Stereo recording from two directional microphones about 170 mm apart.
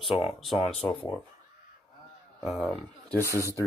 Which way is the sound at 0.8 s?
15° left (ahead or behind).